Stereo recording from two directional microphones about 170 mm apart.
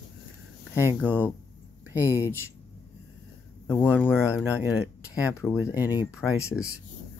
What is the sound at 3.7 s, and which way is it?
Speech, 10° left (ahead or behind).